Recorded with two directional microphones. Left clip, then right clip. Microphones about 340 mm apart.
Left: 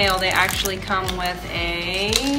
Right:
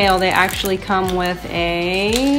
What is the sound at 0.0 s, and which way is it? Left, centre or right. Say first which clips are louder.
Speech: right 4 dB; centre.